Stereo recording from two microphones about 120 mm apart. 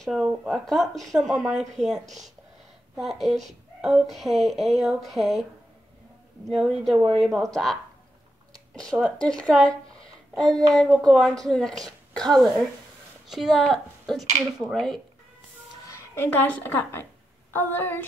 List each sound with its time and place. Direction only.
0.0 s speech: 5° right (ahead or behind)
3.0 s speech: centre (ahead or behind)
6.5 s speech: centre (ahead or behind)
9.0 s a child's voice: 5° left (ahead or behind)
15.9 s a woman's voice: 15° left (ahead or behind)